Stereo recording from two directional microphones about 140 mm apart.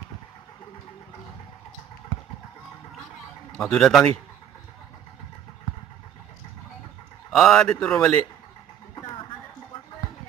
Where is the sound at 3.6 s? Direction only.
5° left (ahead or behind).